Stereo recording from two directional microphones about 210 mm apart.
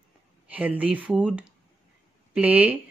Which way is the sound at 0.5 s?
5° right (ahead or behind).